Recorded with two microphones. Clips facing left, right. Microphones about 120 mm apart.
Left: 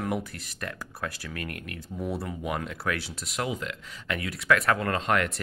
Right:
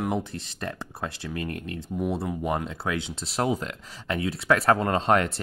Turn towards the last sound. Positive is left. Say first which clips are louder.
# right 4 dB
turn(degrees=-35)  # may be behind; listen again after turning